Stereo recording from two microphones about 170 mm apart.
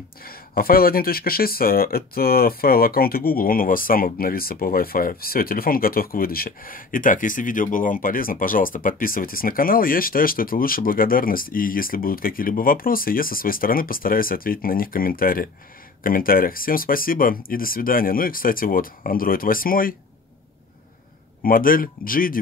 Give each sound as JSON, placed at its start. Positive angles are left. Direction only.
{"t": 0.2, "sound": "speech", "side_deg": 60}
{"t": 21.4, "sound": "speech", "side_deg": 55}